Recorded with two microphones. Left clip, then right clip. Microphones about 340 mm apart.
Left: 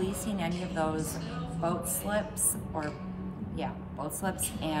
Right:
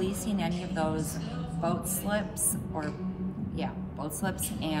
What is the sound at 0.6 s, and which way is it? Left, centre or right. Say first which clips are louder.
A man's voice: even; centre.